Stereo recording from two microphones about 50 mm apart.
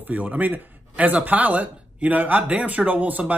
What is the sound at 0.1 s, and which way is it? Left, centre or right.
A man's voice, right.